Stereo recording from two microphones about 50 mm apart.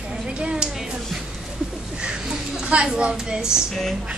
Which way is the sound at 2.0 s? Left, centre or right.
Centre.